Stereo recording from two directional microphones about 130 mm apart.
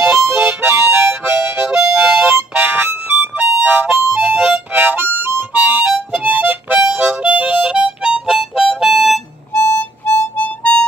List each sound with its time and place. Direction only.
0.0 s harmonica: 20° right (ahead or behind); by 9.2 s centre (ahead or behind)
9.5 s harmonica: 20° left (ahead or behind)